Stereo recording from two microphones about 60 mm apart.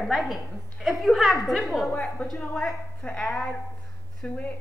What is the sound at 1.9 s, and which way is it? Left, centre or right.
Speech, left.